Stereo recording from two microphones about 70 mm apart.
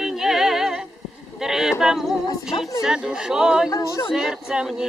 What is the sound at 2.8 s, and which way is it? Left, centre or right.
Speech, centre.